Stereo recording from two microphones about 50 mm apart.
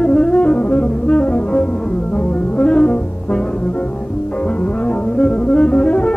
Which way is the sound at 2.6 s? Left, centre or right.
Left.